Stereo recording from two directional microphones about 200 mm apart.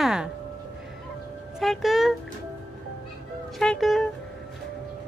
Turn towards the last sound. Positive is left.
turn(degrees=0)  # may be behind; listen again after turning